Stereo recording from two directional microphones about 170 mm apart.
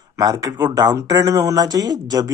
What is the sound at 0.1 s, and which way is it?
Speech, 20° right (ahead or behind).